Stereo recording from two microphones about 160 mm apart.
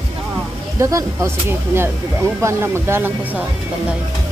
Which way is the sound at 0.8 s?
20° right (ahead or behind).